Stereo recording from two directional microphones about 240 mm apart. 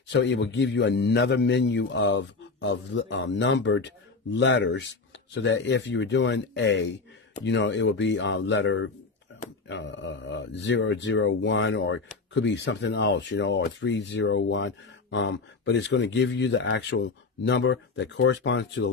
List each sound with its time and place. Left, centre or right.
0.1 s speech: left